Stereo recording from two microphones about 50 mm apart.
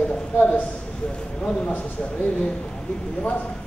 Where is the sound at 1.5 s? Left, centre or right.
Left.